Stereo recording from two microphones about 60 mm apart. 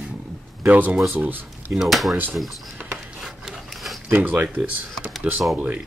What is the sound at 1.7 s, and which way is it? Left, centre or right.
Speech, centre.